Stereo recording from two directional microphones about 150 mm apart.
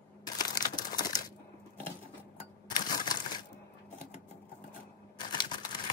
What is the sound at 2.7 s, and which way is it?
Typewriter, 25° left (ahead or behind).